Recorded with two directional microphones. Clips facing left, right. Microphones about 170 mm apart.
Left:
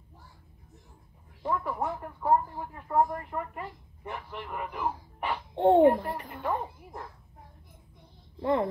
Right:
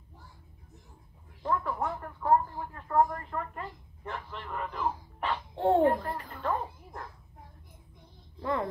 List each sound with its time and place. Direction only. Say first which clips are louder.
1.4 s speech: even; 10° left (ahead or behind)
8.4 s speech: left 5 dB; 25° left (ahead or behind)